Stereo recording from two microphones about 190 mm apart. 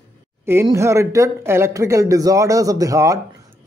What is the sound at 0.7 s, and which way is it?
Speech, 15° right (ahead or behind).